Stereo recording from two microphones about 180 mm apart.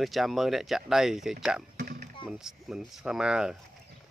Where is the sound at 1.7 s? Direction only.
50° right (ahead or behind).